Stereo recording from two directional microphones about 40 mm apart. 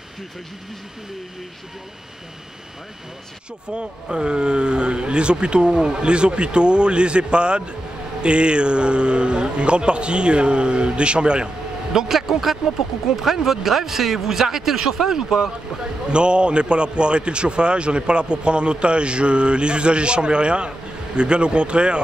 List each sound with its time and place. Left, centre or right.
3.7 s a man's voice: right
16.1 s a man's voice: right